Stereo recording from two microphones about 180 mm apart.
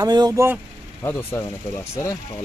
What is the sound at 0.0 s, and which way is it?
Speech, 20° right (ahead or behind).